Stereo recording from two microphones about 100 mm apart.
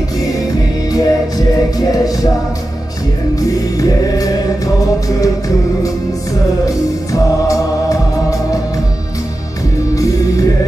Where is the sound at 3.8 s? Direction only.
35° left (ahead or behind).